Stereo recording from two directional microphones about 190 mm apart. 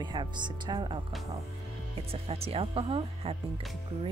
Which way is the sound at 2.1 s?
30° right (ahead or behind).